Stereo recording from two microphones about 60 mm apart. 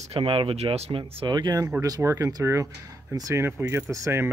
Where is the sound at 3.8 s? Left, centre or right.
Right.